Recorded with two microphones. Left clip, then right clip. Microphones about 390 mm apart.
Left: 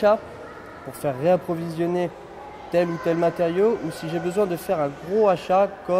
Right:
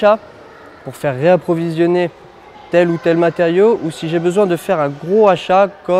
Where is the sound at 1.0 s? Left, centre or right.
Right.